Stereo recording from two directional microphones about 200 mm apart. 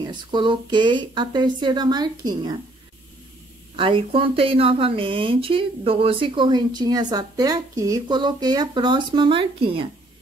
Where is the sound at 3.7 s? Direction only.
25° right (ahead or behind).